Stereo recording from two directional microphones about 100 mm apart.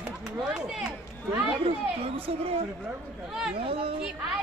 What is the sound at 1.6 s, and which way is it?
Speech, 75° right (ahead or behind).